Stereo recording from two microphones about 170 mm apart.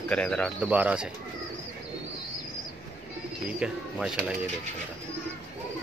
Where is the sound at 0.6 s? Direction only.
5° right (ahead or behind).